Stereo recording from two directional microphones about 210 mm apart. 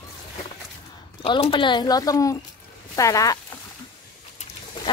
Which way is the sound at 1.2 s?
25° left (ahead or behind).